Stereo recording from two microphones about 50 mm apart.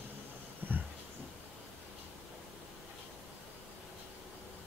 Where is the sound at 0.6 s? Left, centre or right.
Right.